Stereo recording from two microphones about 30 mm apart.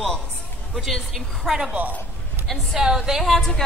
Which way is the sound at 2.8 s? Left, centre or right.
Centre.